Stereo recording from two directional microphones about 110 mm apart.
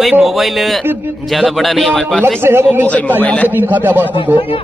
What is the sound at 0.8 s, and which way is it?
Speech, 20° right (ahead or behind).